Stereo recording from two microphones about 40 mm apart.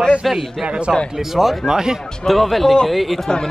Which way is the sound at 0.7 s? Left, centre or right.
Right.